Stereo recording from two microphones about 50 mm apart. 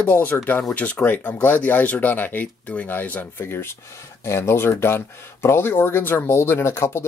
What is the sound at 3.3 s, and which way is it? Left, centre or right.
Speech, left.